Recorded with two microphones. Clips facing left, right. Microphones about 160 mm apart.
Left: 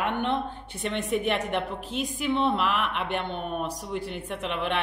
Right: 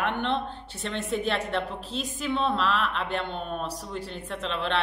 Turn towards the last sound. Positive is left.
turn(degrees=15)  # may be behind; listen again after turning